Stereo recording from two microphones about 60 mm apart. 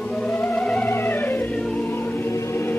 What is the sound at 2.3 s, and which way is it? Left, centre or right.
Music, left.